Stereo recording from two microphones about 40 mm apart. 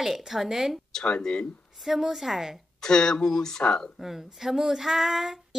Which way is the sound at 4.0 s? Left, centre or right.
Centre.